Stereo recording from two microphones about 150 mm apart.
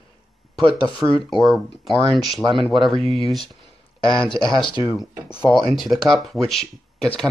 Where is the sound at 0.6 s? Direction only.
35° left (ahead or behind).